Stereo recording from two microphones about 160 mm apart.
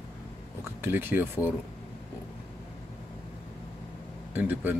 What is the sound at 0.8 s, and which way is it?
Speech, 15° right (ahead or behind).